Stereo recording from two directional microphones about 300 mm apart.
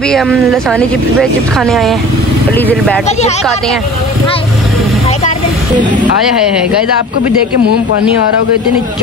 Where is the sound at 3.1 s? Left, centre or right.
Left.